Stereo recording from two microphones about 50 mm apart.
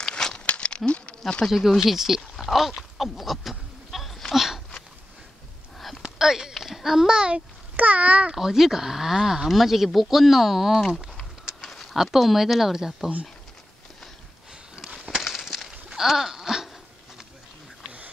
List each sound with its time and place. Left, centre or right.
0.0 s crumpling: centre
0.5 s a sound: left
1.8 s speech: centre
2.3 s goat: centre
6.0 s a sound: centre
6.5 s a child's voice: centre
7.7 s a child's voice: right
8.3 s speech: centre
15.0 s a sound: centre